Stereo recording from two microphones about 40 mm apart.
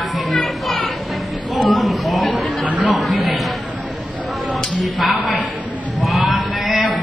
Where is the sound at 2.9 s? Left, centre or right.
Centre.